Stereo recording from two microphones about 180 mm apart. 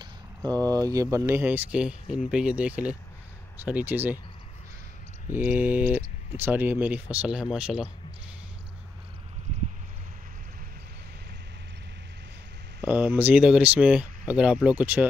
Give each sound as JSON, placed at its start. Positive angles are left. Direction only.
{"t": 0.0, "sound": "a sound", "side_deg": -20}
{"t": 0.8, "sound": "speech", "side_deg": -15}
{"t": 5.3, "sound": "speech", "side_deg": -10}
{"t": 12.8, "sound": "speech", "side_deg": -10}